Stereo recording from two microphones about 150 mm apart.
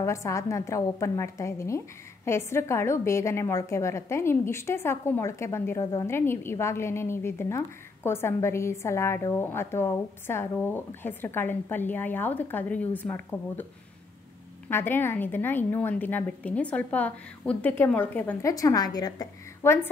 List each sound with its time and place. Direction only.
0.0 s a woman's voice: 20° left (ahead or behind)
14.7 s a woman's voice: 15° left (ahead or behind)
18.5 s a woman's voice: 25° left (ahead or behind)